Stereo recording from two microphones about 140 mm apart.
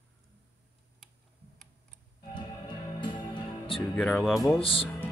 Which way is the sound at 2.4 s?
35° left (ahead or behind).